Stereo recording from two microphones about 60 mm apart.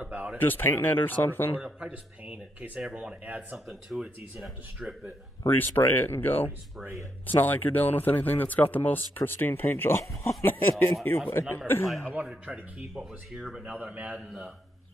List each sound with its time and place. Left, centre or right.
0.0 s a sound: right
0.4 s speech: left
1.6 s speech: right
3.5 s speech: centre
5.5 s speech: left
12.5 s speech: centre
12.9 s speech: centre
13.7 s speech: right
14.1 s speech: centre